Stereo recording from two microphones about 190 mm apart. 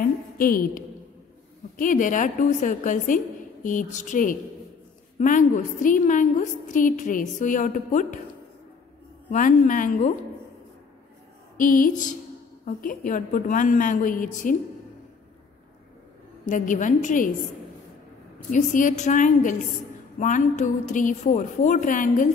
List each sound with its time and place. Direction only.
0.0 s a sound: 50° left (ahead or behind)
1.8 s a woman's voice: 45° left (ahead or behind)
9.3 s a woman's voice: 40° left (ahead or behind)
11.5 s a woman's voice: 45° left (ahead or behind)
16.4 s a woman's voice: 45° left (ahead or behind)
18.5 s a woman's voice: 45° left (ahead or behind)